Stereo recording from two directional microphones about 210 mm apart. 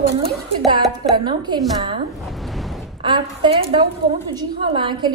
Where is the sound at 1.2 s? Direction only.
20° right (ahead or behind).